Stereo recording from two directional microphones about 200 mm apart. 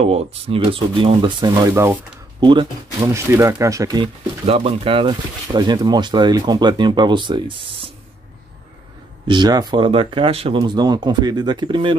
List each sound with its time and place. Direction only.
0.0 s speech: 30° right (ahead or behind); by 2.0 s 15° right (ahead or behind)
3.1 s speech: 15° right (ahead or behind)
9.3 s speech: 20° right (ahead or behind)